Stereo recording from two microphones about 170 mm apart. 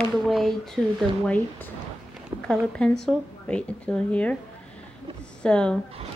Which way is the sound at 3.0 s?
5° left (ahead or behind).